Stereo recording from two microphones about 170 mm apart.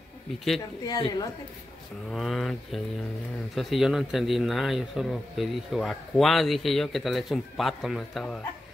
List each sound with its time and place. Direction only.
1.0 s a woman's voice: 25° left (ahead or behind)
2.0 s a man's voice: centre (ahead or behind)